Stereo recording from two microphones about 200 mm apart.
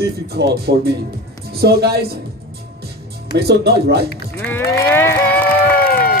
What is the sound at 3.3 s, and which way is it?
Speech, 55° right (ahead or behind).